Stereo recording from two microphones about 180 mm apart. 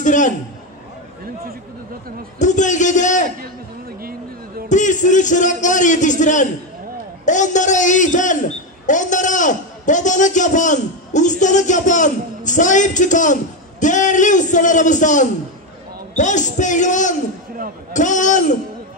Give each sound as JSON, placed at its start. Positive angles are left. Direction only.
{"t": 0.0, "sound": "a man's voice", "side_deg": 45}
{"t": 2.3, "sound": "a man's voice", "side_deg": 45}
{"t": 4.6, "sound": "a man's voice", "side_deg": 45}